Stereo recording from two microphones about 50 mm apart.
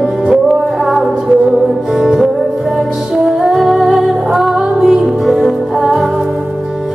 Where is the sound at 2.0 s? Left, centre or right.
Centre.